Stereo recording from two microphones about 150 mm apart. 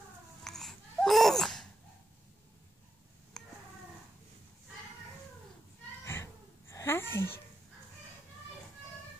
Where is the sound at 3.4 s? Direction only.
Centre (ahead or behind).